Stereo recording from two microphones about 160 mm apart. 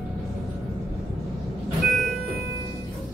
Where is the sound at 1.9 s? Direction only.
Centre (ahead or behind).